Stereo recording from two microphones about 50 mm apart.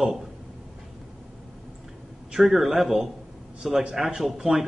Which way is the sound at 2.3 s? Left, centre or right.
Centre.